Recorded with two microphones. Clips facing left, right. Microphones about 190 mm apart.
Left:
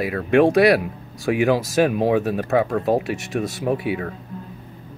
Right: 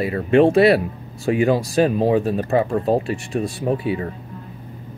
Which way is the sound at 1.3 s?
75° left (ahead or behind).